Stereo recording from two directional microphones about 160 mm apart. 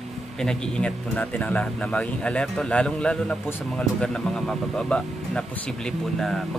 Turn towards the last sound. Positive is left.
turn(degrees=0)  # may be behind; listen again after turning